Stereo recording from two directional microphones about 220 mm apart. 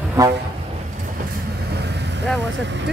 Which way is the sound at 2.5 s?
55° right (ahead or behind).